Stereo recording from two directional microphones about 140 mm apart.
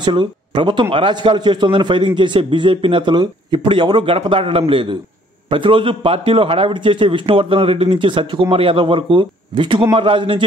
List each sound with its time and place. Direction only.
0.0 s a man's voice: 35° right (ahead or behind)